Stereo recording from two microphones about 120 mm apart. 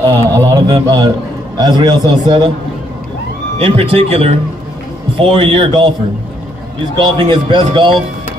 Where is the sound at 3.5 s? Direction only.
50° right (ahead or behind).